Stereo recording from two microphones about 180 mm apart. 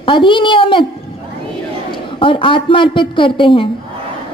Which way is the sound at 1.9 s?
30° left (ahead or behind).